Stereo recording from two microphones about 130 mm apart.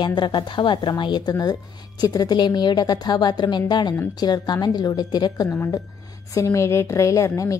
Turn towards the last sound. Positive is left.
turn(degrees=25)  # may be behind; listen again after turning